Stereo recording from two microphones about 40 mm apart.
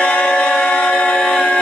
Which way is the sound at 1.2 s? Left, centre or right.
Left.